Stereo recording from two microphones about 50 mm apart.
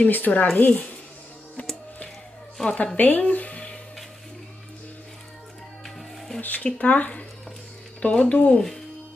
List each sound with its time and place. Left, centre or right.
0.0 s speech: left
1.6 s music: left
2.6 s speech: left
3.0 s speech: left
6.4 s speech: left